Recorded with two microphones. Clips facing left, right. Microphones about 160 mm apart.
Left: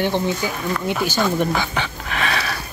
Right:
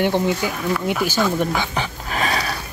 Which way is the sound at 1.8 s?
35° right (ahead or behind).